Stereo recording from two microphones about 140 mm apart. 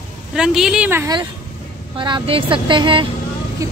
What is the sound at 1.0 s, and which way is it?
Speech, 30° right (ahead or behind).